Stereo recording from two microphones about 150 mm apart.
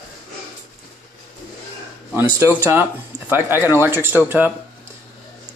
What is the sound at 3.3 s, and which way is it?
Speech, 15° right (ahead or behind).